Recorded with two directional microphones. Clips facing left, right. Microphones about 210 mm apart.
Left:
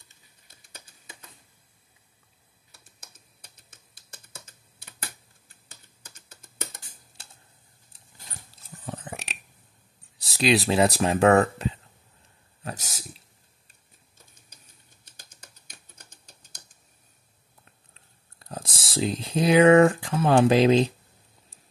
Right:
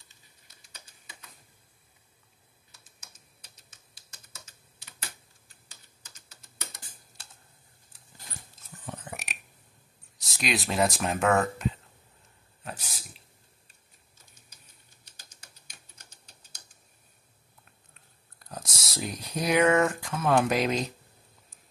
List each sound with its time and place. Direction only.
4.3 s computer keyboard: 55° left (ahead or behind)
5.7 s typing: 55° left (ahead or behind)
8.5 s a sound: 35° left (ahead or behind)
10.2 s speech: 30° left (ahead or behind)
12.6 s a sound: 45° left (ahead or behind)
18.4 s speech: 30° left (ahead or behind)